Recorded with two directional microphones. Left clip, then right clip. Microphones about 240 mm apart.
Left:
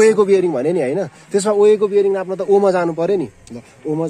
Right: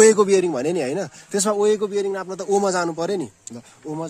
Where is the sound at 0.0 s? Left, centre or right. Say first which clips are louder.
Left 2 dB; right.